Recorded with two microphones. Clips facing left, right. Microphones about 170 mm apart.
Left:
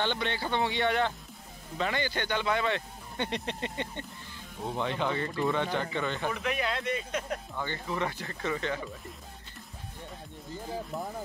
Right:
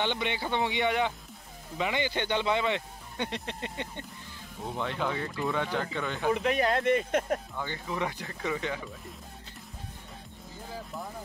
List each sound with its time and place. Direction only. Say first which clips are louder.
0.0 s speech: even; 15° right (ahead or behind)
3.3 s speech: left 2 dB; centre (ahead or behind)
6.3 s speech: right 5 dB; 35° right (ahead or behind); by 7.3 s 55° right (ahead or behind)
7.5 s speech: left 1 dB; 5° right (ahead or behind)